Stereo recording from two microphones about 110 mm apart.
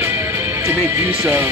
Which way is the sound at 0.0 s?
20° right (ahead or behind).